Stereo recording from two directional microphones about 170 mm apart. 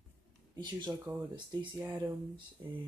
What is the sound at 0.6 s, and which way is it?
Speech, 25° right (ahead or behind).